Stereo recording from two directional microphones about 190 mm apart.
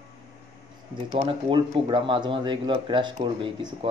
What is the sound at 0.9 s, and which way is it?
Speech, 25° right (ahead or behind).